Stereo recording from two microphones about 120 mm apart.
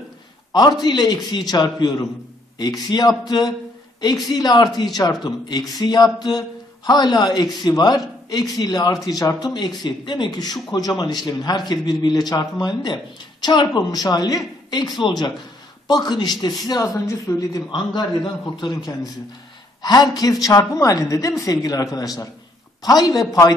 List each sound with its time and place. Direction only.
0.5 s a man's voice: 35° left (ahead or behind)